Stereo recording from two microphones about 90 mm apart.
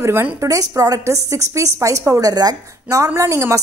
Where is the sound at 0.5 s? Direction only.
40° right (ahead or behind).